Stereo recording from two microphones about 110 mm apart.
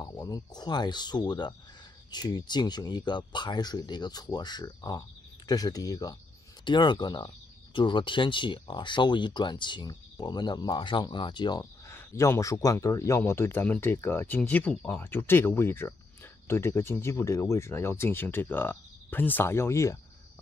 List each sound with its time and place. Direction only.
0.0 s speech: 35° left (ahead or behind)
11.9 s speech: 25° left (ahead or behind)